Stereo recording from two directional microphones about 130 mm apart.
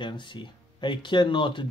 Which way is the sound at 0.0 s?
40° left (ahead or behind).